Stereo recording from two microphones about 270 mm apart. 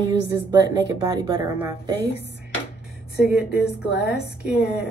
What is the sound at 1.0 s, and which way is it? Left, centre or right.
Speech, centre.